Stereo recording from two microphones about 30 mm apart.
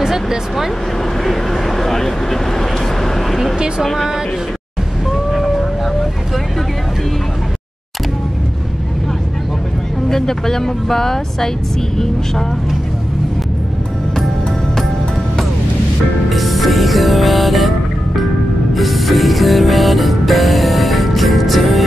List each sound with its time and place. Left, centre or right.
0.0 s speech: centre
1.2 s vehicle: centre
3.5 s speech: right
3.8 s speech: centre
5.1 s a sound: centre
10.0 s speech: centre
16.3 s music: centre